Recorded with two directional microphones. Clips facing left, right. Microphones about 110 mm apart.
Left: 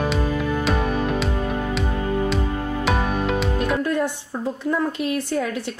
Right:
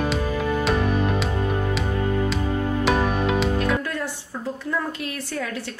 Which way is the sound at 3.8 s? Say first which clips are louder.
Left 7 dB; 20° left (ahead or behind).